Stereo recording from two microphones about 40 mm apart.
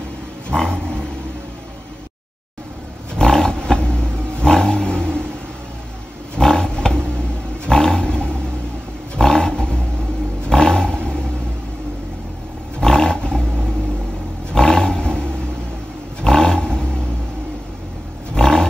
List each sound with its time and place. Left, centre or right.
0.5 s roaring cats: centre
3.2 s roaring cats: centre
6.3 s roaring cats: centre
7.6 s roar: centre
10.4 s a sound: centre
12.8 s roar: centre
14.5 s roar: centre
18.3 s roar: centre